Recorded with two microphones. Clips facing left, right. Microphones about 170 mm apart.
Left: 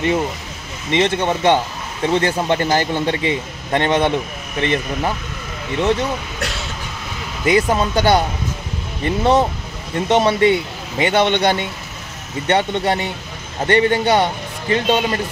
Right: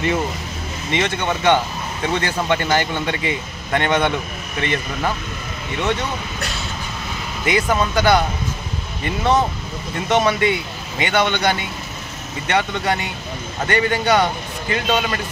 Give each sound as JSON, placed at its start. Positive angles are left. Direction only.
{"t": 0.9, "sound": "a man's voice", "side_deg": 30}
{"t": 7.4, "sound": "a man's voice", "side_deg": 30}